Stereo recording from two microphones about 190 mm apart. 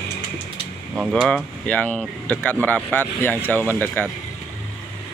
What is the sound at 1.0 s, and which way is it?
Speech, centre (ahead or behind).